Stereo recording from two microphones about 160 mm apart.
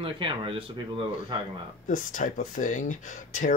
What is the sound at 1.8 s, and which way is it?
Speech, 55° left (ahead or behind).